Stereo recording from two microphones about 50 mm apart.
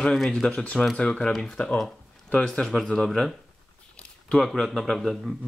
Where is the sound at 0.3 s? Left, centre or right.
Left.